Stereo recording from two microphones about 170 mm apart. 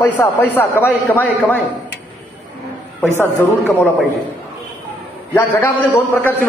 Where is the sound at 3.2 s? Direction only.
15° left (ahead or behind).